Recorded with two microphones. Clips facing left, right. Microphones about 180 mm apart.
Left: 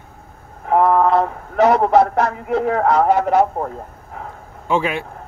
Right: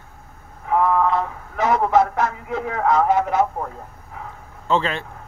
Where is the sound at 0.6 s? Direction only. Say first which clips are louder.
Left 4 dB; 45° left (ahead or behind).